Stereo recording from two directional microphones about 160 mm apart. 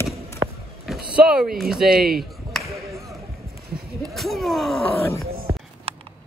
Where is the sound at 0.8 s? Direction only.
Centre (ahead or behind).